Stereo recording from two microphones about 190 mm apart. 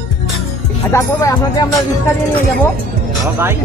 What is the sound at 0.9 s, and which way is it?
Speech, 15° left (ahead or behind).